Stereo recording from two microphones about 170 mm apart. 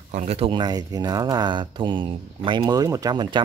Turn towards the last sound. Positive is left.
turn(degrees=-25)  # may be behind; listen again after turning